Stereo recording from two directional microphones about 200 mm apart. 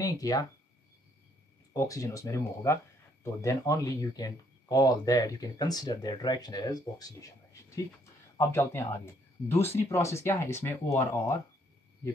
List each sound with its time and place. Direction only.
0.0 s speech: 15° left (ahead or behind)
1.7 s speech: 15° left (ahead or behind)